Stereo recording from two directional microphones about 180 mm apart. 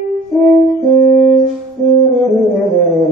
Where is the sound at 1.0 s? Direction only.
45° left (ahead or behind).